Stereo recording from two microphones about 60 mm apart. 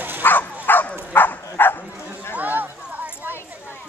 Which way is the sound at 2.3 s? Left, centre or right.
Right.